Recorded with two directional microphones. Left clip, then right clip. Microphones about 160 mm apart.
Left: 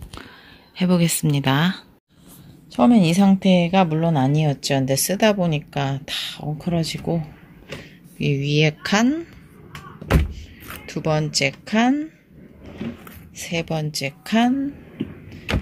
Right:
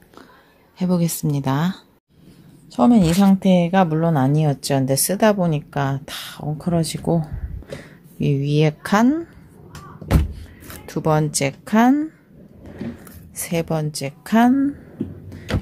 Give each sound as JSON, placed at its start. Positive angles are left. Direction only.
{"t": 0.7, "sound": "speech", "side_deg": 0}
{"t": 8.2, "sound": "speech", "side_deg": -15}
{"t": 10.9, "sound": "speech", "side_deg": -15}
{"t": 13.4, "sound": "speech", "side_deg": -20}